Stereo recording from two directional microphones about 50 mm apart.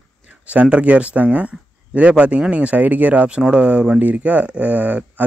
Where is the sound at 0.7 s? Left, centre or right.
Right.